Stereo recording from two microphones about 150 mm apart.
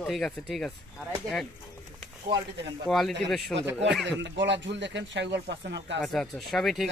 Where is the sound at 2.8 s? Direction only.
5° left (ahead or behind).